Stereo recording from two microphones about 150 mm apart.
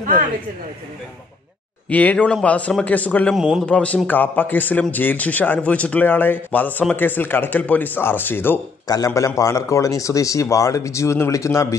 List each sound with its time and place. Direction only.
1.9 s a man's voice: 10° left (ahead or behind)
8.8 s speech: 25° left (ahead or behind)